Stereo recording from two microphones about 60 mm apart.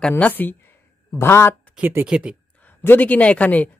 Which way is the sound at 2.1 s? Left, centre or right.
Centre.